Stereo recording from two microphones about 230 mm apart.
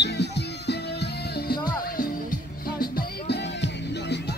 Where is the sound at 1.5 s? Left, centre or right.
Centre.